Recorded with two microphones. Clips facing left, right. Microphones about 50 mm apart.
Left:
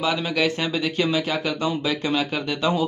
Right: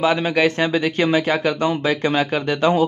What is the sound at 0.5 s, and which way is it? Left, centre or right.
Speech, right.